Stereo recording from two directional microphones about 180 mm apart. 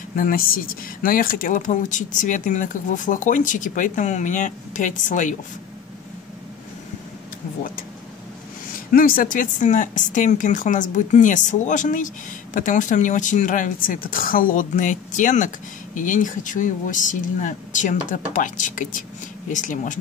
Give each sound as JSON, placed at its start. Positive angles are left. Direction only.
{"t": 0.1, "sound": "speech", "side_deg": 50}
{"t": 8.9, "sound": "speech", "side_deg": 50}